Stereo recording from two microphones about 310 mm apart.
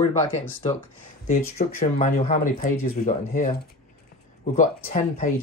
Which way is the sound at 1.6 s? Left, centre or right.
Left.